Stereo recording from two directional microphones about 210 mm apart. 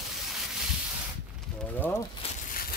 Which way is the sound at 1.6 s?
10° left (ahead or behind).